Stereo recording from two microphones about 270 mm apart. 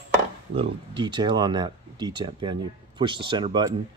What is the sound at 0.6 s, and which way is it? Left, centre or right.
Speech, centre.